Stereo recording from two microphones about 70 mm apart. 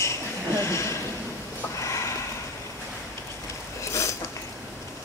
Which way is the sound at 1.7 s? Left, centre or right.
Left.